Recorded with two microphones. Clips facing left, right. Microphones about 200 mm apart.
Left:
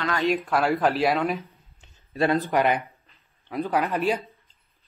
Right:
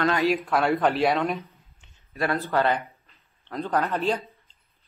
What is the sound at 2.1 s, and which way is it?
Speech, 20° left (ahead or behind).